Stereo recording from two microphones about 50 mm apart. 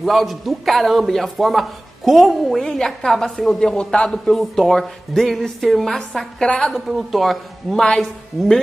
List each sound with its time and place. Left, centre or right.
0.0 s speech: centre
6.4 s speech: centre
7.0 s speech: centre